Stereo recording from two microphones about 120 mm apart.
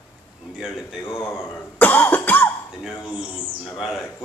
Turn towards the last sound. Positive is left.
turn(degrees=0)  # may be behind; listen again after turning